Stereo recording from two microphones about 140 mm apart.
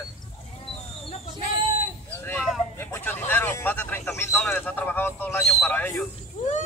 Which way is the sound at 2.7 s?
15° left (ahead or behind).